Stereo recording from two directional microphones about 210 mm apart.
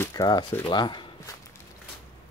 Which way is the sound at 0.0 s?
20° left (ahead or behind).